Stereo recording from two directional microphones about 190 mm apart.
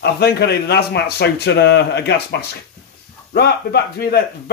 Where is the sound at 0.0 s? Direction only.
60° left (ahead or behind).